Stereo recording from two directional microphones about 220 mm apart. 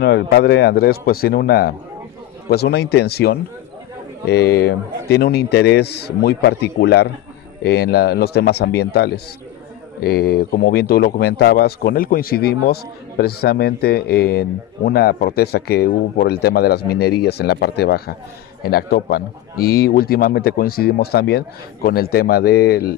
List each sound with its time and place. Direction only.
0.0 s speech: 50° left (ahead or behind)